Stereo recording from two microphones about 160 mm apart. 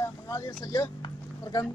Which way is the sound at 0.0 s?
20° left (ahead or behind).